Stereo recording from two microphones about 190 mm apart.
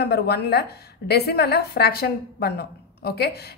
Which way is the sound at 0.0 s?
60° left (ahead or behind).